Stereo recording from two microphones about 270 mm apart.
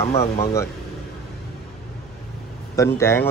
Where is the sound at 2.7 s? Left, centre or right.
Centre.